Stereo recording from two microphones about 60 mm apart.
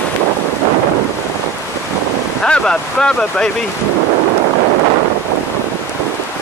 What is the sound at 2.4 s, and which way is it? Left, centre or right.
Speech, centre.